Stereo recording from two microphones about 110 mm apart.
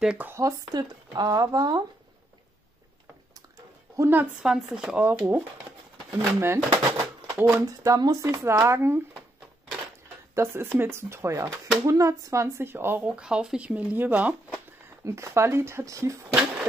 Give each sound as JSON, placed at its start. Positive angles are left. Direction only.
{"t": 0.0, "sound": "speech", "side_deg": -10}
{"t": 0.3, "sound": "speech", "side_deg": -30}
{"t": 3.5, "sound": "a sound", "side_deg": -30}
{"t": 4.1, "sound": "speech", "side_deg": -15}
{"t": 4.5, "sound": "speech", "side_deg": -5}
{"t": 5.0, "sound": "speech", "side_deg": -20}
{"t": 10.3, "sound": "speech", "side_deg": -25}
{"t": 13.1, "sound": "speech", "side_deg": -10}
{"t": 15.0, "sound": "speech", "side_deg": -25}